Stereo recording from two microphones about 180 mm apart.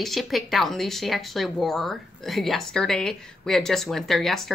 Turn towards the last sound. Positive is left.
turn(degrees=0)  # may be behind; listen again after turning